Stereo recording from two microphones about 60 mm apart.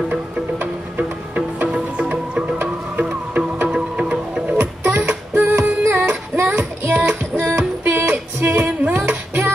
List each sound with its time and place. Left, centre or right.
0.1 s music: right
4.6 s music: right